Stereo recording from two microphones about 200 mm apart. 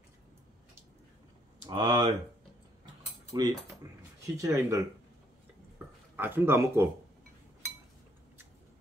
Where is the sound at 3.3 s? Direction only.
20° right (ahead or behind).